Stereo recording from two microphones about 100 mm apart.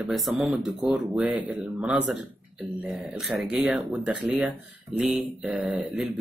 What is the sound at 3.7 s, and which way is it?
Speech, 10° right (ahead or behind).